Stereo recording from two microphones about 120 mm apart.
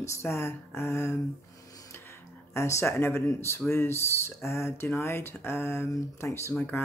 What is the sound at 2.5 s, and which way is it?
Speech, 20° left (ahead or behind).